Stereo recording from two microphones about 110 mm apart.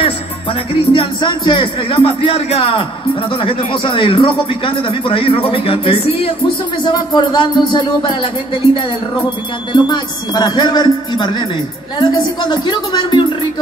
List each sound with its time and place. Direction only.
0.0 s speech: 55° left (ahead or behind)
6.8 s speech: 45° left (ahead or behind)
9.7 s speech: 40° left (ahead or behind)